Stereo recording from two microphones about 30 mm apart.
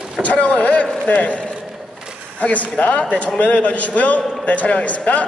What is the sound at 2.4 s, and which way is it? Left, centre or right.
A man's voice, left.